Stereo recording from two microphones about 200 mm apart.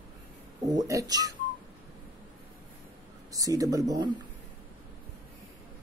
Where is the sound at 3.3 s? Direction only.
15° right (ahead or behind).